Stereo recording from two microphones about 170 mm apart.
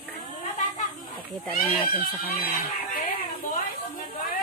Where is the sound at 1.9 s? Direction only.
60° left (ahead or behind).